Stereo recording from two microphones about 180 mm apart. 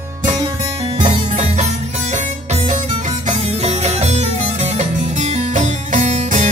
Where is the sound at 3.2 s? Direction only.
40° right (ahead or behind).